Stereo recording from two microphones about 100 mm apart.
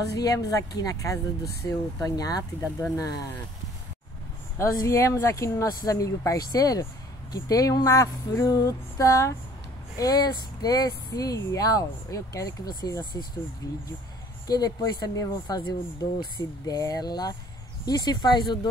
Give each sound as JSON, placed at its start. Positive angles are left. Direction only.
{"t": 0.1, "sound": "speech", "side_deg": 35}
{"t": 4.6, "sound": "speech", "side_deg": 35}
{"t": 14.5, "sound": "speech", "side_deg": 40}